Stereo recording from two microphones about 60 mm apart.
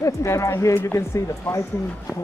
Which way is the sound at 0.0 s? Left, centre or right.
Left.